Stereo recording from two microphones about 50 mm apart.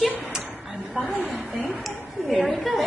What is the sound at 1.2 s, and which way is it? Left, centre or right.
Speech, right.